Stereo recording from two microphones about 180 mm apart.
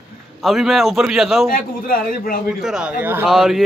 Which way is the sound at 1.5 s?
50° left (ahead or behind).